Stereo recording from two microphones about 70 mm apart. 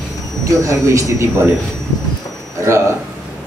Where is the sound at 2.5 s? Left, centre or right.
Right.